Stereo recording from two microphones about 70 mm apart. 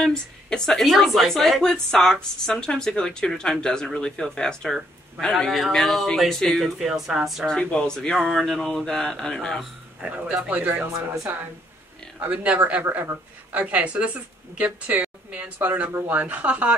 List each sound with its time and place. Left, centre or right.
0.0 s a woman's voice: centre
6.8 s speech: centre
7.4 s a woman's voice: centre
10.2 s speech: right
12.8 s speech: right
13.5 s speech: right